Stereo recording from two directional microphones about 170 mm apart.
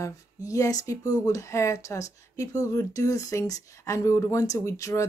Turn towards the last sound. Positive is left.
turn(degrees=20)  # may be behind; listen again after turning